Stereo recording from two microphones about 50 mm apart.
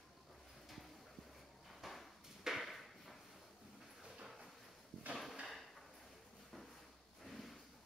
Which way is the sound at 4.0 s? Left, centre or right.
Centre.